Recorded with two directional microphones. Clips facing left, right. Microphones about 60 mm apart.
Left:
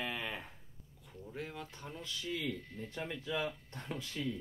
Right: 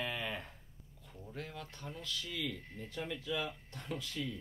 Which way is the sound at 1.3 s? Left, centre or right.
Centre.